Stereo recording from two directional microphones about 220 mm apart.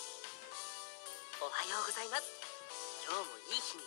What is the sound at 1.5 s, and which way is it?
Speech, 45° left (ahead or behind).